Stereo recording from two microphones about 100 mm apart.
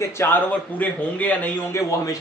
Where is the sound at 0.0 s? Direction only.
25° left (ahead or behind).